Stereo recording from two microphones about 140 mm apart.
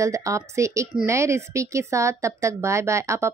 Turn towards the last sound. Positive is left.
turn(degrees=-20)  # may be behind; listen again after turning